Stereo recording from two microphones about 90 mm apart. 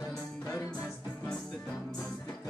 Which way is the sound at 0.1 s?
35° left (ahead or behind).